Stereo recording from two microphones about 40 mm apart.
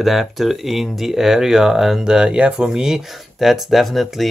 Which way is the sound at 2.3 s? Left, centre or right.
Right.